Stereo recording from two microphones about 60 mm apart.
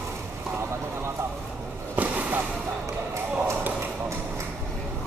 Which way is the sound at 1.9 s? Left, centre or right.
Right.